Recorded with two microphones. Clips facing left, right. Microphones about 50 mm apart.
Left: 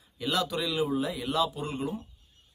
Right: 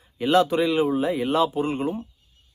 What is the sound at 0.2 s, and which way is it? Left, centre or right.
A man's voice, right.